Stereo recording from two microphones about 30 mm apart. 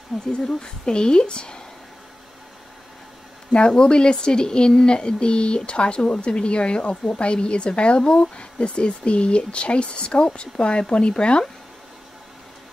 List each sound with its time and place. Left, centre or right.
0.1 s a woman's voice: centre
0.6 s a woman's voice: left
3.5 s speech: left